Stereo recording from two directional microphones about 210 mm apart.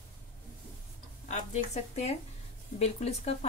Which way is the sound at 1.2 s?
35° left (ahead or behind).